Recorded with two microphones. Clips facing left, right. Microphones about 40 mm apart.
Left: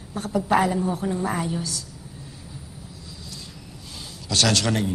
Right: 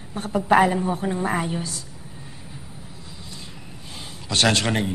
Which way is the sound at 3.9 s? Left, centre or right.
Right.